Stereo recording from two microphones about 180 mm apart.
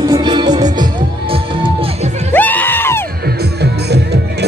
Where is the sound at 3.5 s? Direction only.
65° right (ahead or behind).